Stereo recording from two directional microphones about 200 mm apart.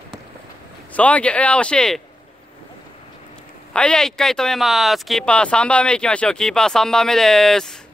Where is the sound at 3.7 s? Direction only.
5° left (ahead or behind).